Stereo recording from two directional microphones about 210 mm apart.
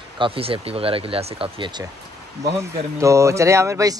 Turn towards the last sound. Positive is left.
turn(degrees=-15)  # may be behind; listen again after turning